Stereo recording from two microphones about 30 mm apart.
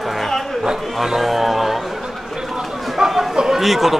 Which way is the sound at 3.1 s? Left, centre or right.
Centre.